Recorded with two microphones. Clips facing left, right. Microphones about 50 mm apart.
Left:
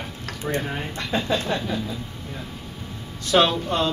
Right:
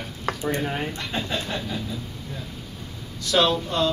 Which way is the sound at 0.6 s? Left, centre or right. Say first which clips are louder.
Right 2 dB; centre.